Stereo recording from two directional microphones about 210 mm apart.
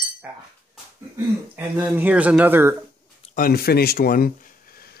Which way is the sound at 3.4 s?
45° left (ahead or behind).